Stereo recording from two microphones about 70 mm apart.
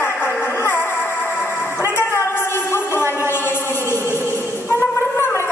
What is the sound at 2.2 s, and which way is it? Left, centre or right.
Music, left.